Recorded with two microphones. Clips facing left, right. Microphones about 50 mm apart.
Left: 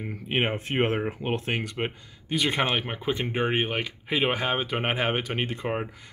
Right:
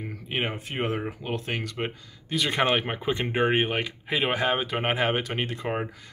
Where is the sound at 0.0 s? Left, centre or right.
Centre.